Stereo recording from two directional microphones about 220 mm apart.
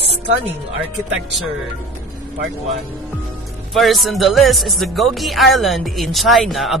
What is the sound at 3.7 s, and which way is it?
Speech, centre (ahead or behind).